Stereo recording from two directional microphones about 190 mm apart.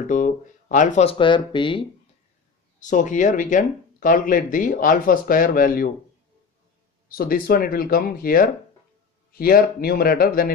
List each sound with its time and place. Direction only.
0.0 s speech: 40° left (ahead or behind); by 1.9 s 25° left (ahead or behind)
2.8 s speech: 40° left (ahead or behind)
7.1 s speech: 50° left (ahead or behind)